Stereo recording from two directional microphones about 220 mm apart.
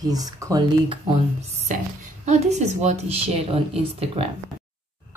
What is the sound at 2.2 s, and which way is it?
Speech, 30° right (ahead or behind).